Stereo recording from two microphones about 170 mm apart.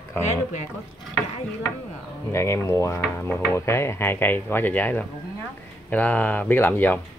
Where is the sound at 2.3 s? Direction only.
15° left (ahead or behind).